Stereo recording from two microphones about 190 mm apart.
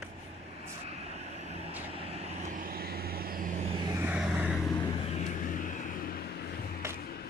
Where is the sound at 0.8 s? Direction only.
35° right (ahead or behind).